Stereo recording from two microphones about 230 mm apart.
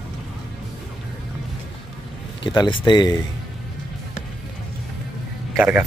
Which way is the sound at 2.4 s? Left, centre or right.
Centre.